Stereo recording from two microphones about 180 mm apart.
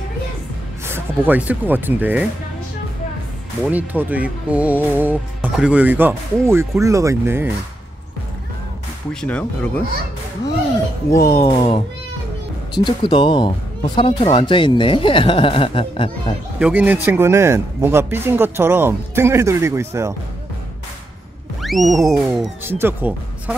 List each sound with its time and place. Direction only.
0.8 s speech: 10° right (ahead or behind)
3.7 s speech: 10° right (ahead or behind)
9.2 s speech: 5° left (ahead or behind)
11.3 s speech: 30° left (ahead or behind)
12.8 s speech: 25° left (ahead or behind)
16.5 s speech: 10° right (ahead or behind)
21.6 s music: centre (ahead or behind)
22.7 s speech: 10° right (ahead or behind)